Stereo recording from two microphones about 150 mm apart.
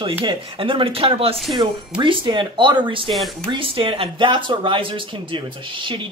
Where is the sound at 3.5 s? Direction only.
35° right (ahead or behind).